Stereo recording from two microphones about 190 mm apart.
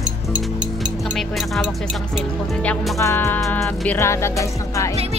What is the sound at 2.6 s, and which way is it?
Speech, 10° left (ahead or behind).